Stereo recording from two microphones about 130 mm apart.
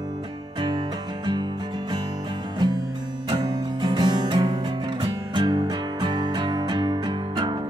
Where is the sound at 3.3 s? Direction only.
35° right (ahead or behind).